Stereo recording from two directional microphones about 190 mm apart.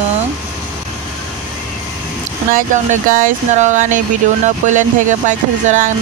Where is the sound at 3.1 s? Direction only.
40° right (ahead or behind).